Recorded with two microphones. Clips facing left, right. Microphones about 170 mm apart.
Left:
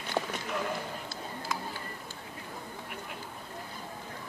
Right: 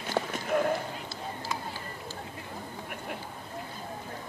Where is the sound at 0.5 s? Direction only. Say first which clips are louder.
Right 8 dB; 50° right (ahead or behind).